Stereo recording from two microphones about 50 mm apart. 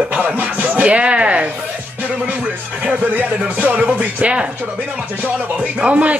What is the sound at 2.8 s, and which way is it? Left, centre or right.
Speech, right.